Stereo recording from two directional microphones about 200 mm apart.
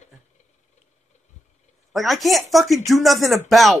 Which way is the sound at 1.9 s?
Centre (ahead or behind).